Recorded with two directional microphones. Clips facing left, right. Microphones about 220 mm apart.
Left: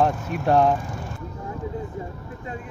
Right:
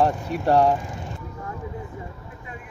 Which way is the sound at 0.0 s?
15° right (ahead or behind).